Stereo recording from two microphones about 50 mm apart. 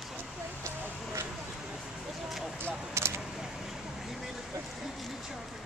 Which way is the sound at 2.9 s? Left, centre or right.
Right.